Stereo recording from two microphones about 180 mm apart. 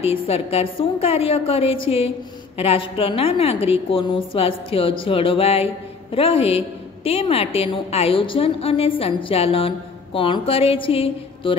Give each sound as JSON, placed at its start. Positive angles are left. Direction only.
{"t": 0.0, "sound": "a woman's voice", "side_deg": 35}